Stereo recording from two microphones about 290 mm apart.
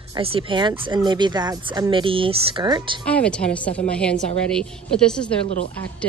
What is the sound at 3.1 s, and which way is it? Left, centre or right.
A woman's voice, centre.